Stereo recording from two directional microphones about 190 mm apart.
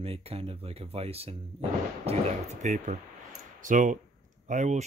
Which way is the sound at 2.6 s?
40° right (ahead or behind).